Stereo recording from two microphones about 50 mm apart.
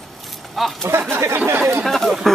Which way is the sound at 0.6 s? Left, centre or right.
Centre.